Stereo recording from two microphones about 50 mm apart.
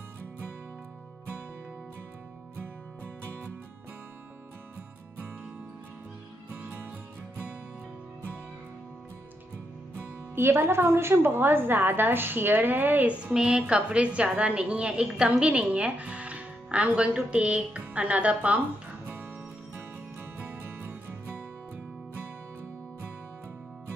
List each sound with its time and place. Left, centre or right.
10.3 s a woman's voice: right
13.1 s a woman's voice: centre